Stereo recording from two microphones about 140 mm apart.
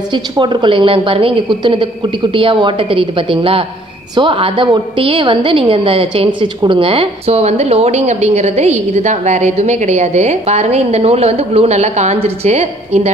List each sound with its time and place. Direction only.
0.1 s a woman's voice: 35° right (ahead or behind); by 13.1 s 50° right (ahead or behind)